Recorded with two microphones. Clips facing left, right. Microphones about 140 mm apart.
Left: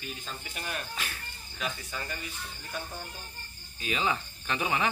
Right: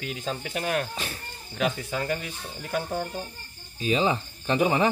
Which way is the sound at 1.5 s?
60° right (ahead or behind).